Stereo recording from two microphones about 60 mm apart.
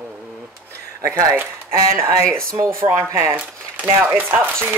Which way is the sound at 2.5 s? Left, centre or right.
Right.